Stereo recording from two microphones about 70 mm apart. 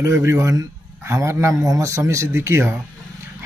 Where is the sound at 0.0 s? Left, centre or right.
Right.